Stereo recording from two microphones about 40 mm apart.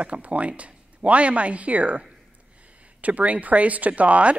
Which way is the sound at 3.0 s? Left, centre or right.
Right.